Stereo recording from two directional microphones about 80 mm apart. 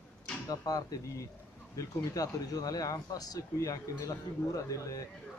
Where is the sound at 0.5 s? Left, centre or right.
Left.